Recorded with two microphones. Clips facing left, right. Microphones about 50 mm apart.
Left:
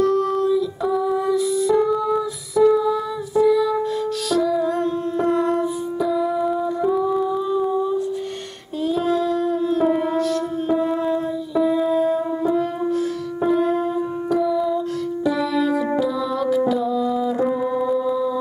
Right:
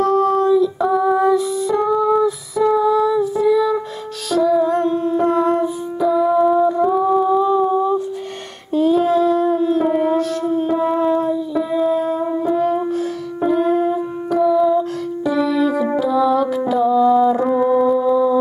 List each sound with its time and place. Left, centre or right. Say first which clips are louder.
0.0 s music: right 4 dB; centre
4.9 s music: right 4 dB; centre
6.8 s singing: right 4 dB; centre
8.7 s a sound: right 6 dB; centre
17.6 s music: right 7 dB; centre
17.9 s a sound: right 6 dB; centre